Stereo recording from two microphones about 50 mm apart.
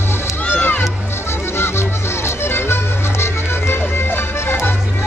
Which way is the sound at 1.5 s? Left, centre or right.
Left.